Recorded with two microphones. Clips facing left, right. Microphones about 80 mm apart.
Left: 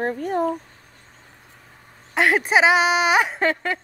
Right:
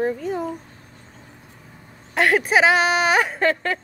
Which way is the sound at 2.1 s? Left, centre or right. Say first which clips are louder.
Even; left.